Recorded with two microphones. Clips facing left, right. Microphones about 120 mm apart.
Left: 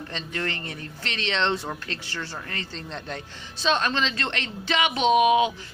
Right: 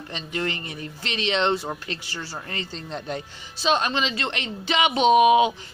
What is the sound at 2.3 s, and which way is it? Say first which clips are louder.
A woman's voice: right 2 dB; 20° right (ahead or behind).